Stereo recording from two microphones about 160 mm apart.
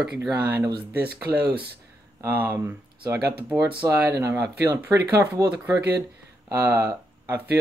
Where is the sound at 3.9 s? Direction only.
15° right (ahead or behind).